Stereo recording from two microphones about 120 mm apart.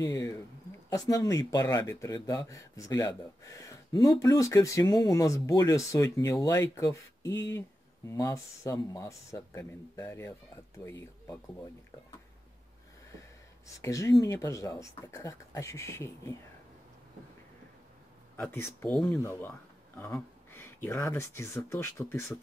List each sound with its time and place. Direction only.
0.0 s speech: 25° left (ahead or behind)
1.8 s speech: 20° left (ahead or behind)
2.0 s speech: 30° left (ahead or behind)
13.7 s speech: 25° left (ahead or behind)
18.3 s speech: 20° left (ahead or behind)
18.9 s speech: 10° left (ahead or behind)
20.0 s speech: 20° left (ahead or behind)